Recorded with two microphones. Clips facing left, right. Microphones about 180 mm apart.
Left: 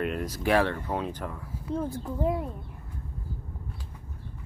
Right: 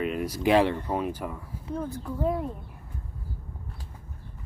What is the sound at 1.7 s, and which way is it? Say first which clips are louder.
Speech: left 1 dB; 25° left (ahead or behind).